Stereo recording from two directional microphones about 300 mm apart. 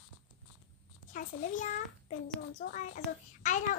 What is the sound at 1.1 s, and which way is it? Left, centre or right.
A child's voice, left.